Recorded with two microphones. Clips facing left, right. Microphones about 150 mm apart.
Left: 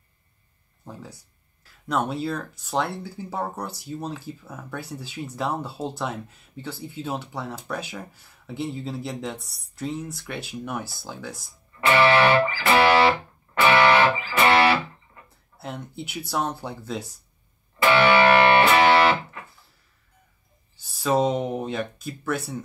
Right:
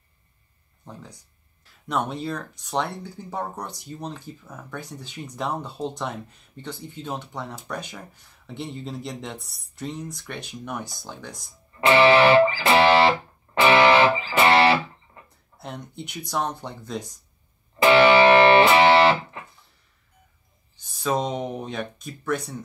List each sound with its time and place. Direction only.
0.8 s speech: 5° left (ahead or behind)
11.8 s music: 20° right (ahead or behind)
15.2 s speech: 5° left (ahead or behind)
17.8 s music: 20° right (ahead or behind)
20.7 s speech: 5° left (ahead or behind)